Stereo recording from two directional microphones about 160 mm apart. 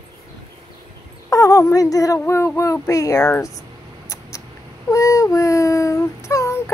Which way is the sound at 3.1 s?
5° left (ahead or behind).